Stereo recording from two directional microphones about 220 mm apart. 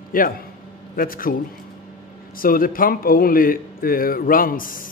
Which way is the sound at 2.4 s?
40° left (ahead or behind).